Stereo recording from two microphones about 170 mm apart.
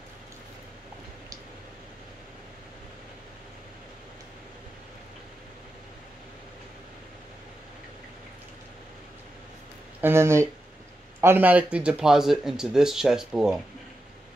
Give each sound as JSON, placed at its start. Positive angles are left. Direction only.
{"t": 9.9, "sound": "speech", "side_deg": -15}